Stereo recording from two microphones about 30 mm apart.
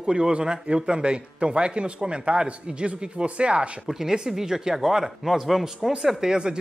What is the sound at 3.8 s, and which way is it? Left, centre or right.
Speech, centre.